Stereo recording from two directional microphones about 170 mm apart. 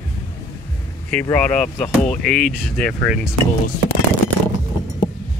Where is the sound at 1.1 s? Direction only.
10° left (ahead or behind).